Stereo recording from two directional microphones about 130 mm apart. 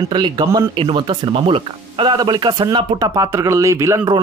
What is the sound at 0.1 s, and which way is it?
Speech, 35° right (ahead or behind).